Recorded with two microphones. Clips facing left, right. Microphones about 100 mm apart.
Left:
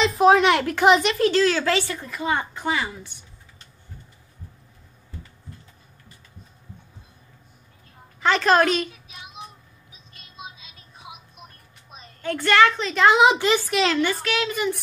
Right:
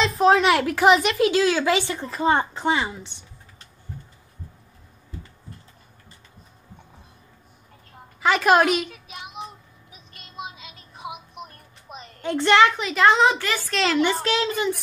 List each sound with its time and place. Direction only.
0.0 s a woman's voice: centre (ahead or behind); by 3.3 s 25° right (ahead or behind)
8.2 s a woman's voice: 10° right (ahead or behind)
9.0 s child singing: 65° right (ahead or behind)
10.1 s music: 70° right (ahead or behind)
12.2 s a child's voice: 20° right (ahead or behind)
13.2 s a child's voice: 20° left (ahead or behind)
13.7 s a woman's voice: 5° left (ahead or behind)
14.2 s speech: 30° right (ahead or behind)